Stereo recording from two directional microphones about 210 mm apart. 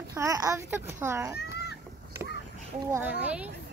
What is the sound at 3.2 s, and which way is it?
Speech, 5° right (ahead or behind).